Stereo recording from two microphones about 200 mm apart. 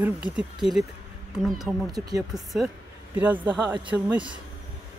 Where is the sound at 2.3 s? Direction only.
Centre (ahead or behind).